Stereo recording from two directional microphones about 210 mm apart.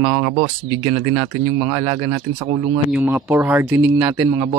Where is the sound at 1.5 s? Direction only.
15° right (ahead or behind).